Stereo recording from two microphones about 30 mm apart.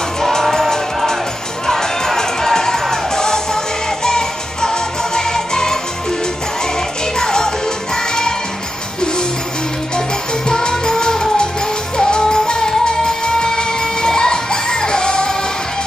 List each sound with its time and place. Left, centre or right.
0.2 s music: centre
7.2 s music: left
10.5 s music: left